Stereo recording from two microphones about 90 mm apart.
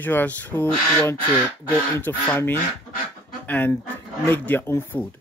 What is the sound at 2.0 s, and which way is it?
Speech, 20° left (ahead or behind).